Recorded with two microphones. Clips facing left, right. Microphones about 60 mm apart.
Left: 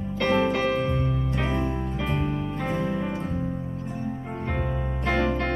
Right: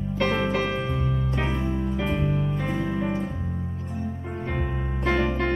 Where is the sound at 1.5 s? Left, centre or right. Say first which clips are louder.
Left 1 dB; left.